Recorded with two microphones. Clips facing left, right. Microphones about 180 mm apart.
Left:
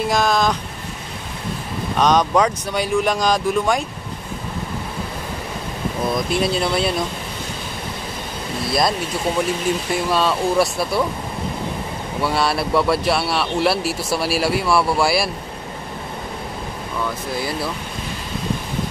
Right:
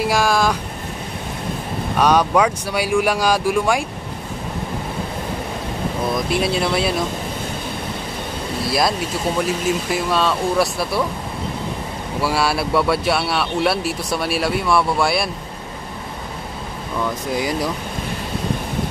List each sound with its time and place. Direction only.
0.0 s speech: 10° right (ahead or behind)
2.0 s speech: 10° right (ahead or behind)
6.3 s speech: 5° right (ahead or behind)
8.6 s speech: centre (ahead or behind)
12.2 s speech: 5° right (ahead or behind)
17.4 s speech: 15° right (ahead or behind)